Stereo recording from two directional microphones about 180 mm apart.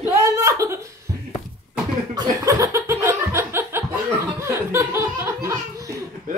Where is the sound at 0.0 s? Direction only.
15° right (ahead or behind).